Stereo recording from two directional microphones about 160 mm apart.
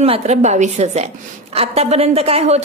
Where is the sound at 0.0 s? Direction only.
40° right (ahead or behind).